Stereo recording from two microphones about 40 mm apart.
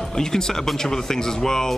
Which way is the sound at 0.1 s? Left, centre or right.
Centre.